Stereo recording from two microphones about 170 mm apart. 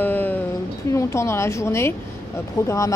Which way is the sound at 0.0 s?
10° left (ahead or behind).